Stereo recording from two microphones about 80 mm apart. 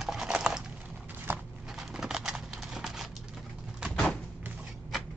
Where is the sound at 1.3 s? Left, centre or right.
Right.